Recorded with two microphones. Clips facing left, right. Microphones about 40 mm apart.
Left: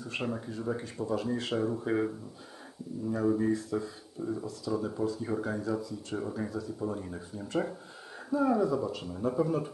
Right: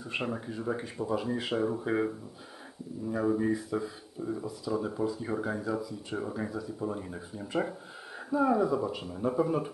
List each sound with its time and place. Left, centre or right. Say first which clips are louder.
0.0 s speech: right 1 dB; centre